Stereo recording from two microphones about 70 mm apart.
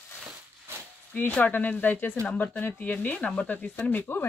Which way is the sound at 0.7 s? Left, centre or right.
Right.